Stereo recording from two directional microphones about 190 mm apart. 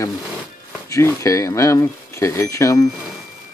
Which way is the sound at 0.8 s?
15° left (ahead or behind).